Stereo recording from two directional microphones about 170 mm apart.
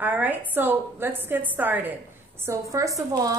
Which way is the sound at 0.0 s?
10° right (ahead or behind).